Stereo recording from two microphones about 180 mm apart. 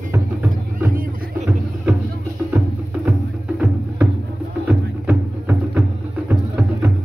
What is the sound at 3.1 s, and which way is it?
Music, 5° right (ahead or behind).